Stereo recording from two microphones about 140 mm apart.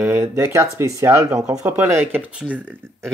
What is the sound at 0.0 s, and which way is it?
Speech, 20° right (ahead or behind).